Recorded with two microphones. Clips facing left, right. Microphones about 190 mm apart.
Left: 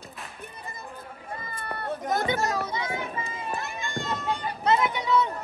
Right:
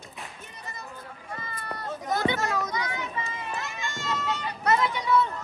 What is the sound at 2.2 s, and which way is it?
Children playing, 40° left (ahead or behind).